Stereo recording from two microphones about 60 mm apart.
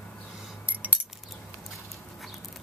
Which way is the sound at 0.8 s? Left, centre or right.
Right.